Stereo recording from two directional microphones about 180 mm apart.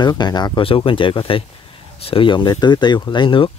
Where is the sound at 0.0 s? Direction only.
25° left (ahead or behind).